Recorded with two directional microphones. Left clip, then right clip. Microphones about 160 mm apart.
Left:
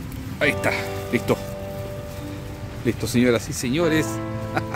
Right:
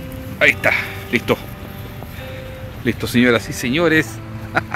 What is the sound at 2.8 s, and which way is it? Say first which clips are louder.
Speech: right 5 dB; 10° left (ahead or behind).